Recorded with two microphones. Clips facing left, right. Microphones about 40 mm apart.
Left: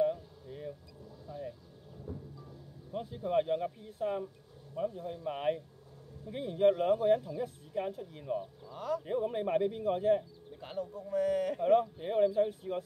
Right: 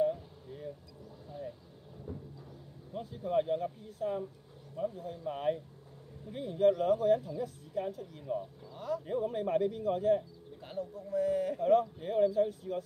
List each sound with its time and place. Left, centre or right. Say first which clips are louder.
0.1 s a sound: even; centre
2.9 s speech: left 1 dB; left
8.7 s speech: left 1 dB; left
9.0 s speech: right 1 dB; centre
11.1 s speech: even; left
11.5 s speech: right 1 dB; left